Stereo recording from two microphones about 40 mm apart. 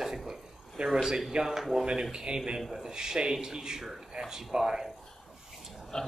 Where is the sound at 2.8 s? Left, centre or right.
Centre.